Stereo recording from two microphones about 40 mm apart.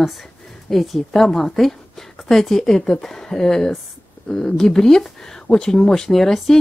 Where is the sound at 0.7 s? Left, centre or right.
Centre.